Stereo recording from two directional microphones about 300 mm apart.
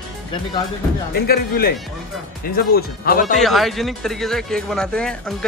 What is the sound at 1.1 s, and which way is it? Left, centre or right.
Speech, left.